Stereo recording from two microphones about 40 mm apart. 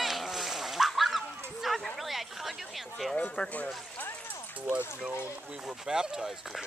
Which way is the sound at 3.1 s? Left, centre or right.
Left.